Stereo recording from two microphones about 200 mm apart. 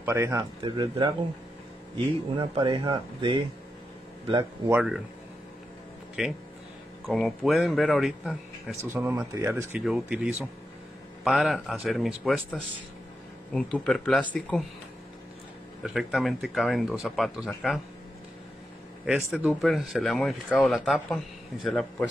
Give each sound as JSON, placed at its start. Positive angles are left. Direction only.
{"t": 0.0, "sound": "speech", "side_deg": -15}
{"t": 2.3, "sound": "speech", "side_deg": -25}
{"t": 4.7, "sound": "speech", "side_deg": -5}
{"t": 6.2, "sound": "speech", "side_deg": 0}
{"t": 8.8, "sound": "speech", "side_deg": -10}
{"t": 15.8, "sound": "speech", "side_deg": 0}
{"t": 19.0, "sound": "speech", "side_deg": -5}